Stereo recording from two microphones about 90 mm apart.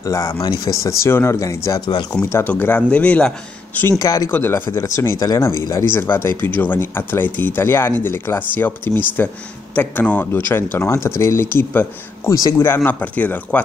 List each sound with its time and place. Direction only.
0.0 s speech: 35° left (ahead or behind)
2.2 s speech: 25° left (ahead or behind)
4.0 s speech: 40° left (ahead or behind)
4.3 s speech: 25° left (ahead or behind)
5.2 s speech: 40° left (ahead or behind)
5.9 s speech: 25° left (ahead or behind)
12.3 s speech: 35° left (ahead or behind); by 13.6 s 20° left (ahead or behind)